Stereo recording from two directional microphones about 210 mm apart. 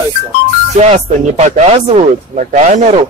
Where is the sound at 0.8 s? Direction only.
30° right (ahead or behind).